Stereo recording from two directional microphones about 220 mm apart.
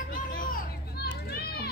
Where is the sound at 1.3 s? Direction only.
45° left (ahead or behind).